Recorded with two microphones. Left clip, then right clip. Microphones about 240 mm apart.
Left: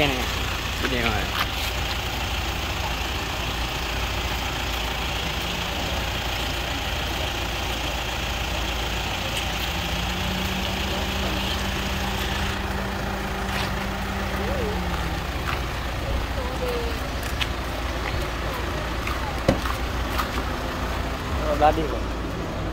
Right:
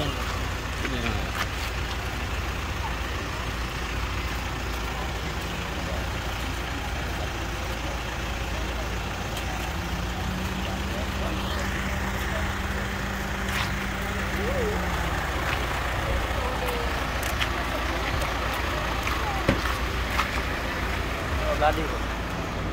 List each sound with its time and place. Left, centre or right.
21.6 s vehicle: left